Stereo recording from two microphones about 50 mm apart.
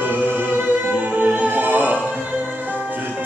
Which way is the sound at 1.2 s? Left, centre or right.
Right.